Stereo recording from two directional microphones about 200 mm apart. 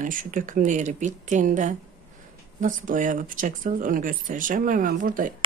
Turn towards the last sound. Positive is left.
turn(degrees=-45)  # may be behind; listen again after turning